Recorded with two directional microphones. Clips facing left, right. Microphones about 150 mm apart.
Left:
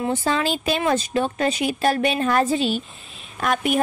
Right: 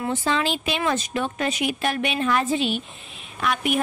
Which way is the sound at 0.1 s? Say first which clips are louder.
Right 1 dB; 40° left (ahead or behind).